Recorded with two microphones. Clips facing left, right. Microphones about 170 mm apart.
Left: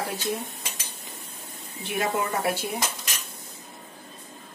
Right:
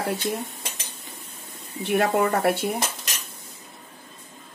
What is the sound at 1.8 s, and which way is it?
Speech, 60° right (ahead or behind).